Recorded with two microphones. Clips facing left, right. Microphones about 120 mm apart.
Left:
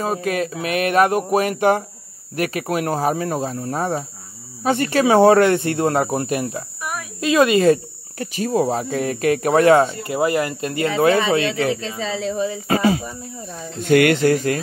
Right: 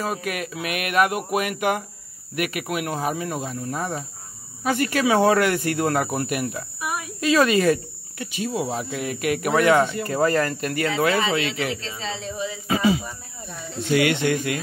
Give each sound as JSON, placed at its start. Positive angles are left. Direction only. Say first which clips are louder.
{"t": 0.0, "sound": "speech", "louder": "left 6 dB", "side_deg": 30}
{"t": 8.2, "sound": "speech", "louder": "left 7 dB", "side_deg": 40}
{"t": 10.0, "sound": "speech", "louder": "left 1 dB", "side_deg": 15}
{"t": 12.4, "sound": "speech", "louder": "left 1 dB", "side_deg": 50}